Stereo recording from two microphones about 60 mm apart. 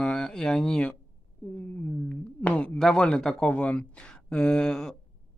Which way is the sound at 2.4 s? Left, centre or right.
Left.